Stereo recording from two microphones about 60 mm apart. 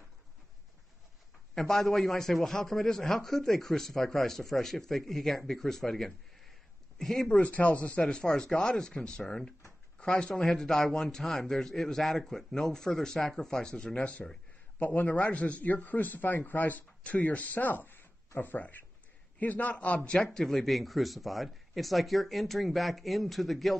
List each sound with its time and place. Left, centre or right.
1.5 s a man's voice: centre
7.2 s speech: left
8.1 s a man's voice: centre
14.8 s speech: left
20.3 s a man's voice: centre